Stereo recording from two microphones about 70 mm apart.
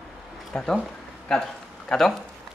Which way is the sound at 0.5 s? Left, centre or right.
Centre.